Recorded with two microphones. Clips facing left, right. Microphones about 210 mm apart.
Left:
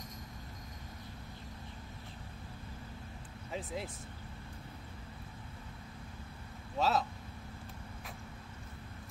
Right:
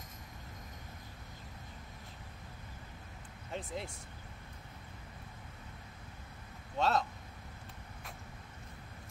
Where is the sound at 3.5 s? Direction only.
Centre (ahead or behind).